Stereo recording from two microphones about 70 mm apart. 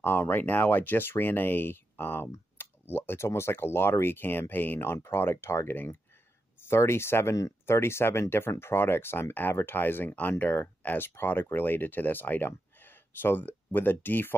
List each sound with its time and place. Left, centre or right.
0.0 s speech: left